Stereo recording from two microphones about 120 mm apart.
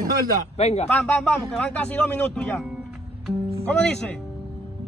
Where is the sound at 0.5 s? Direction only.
65° left (ahead or behind).